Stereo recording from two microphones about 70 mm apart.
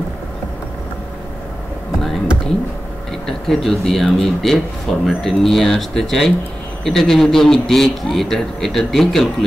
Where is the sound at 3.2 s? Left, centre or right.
Centre.